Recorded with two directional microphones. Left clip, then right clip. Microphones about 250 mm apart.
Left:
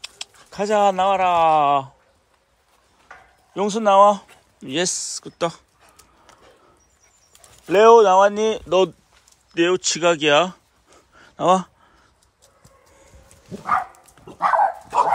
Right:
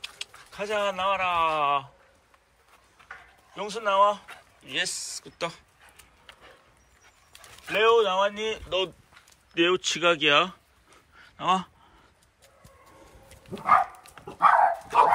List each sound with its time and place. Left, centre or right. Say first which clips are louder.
0.2 s speech: left 10 dB; centre
3.5 s speech: left 9 dB; centre
7.7 s speech: left 10 dB; centre
9.5 s a sound: left 4 dB; centre
14.1 s dog: left 1 dB; centre